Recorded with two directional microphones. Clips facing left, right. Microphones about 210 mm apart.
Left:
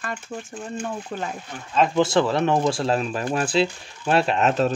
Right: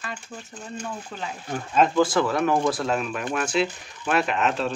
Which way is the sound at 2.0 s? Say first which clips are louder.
Left 2 dB; 25° left (ahead or behind).